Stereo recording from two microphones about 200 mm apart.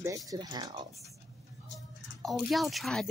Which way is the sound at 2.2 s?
Centre (ahead or behind).